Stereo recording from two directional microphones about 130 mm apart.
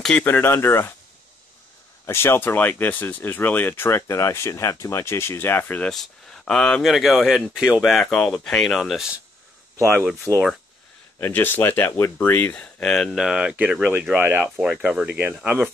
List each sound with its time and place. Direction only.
0.0 s speech: 10° left (ahead or behind)
2.0 s speech: 20° left (ahead or behind); by 9.2 s 5° right (ahead or behind)
10.3 s speech: 5° right (ahead or behind)
11.1 s speech: 15° left (ahead or behind); by 15.7 s 5° right (ahead or behind)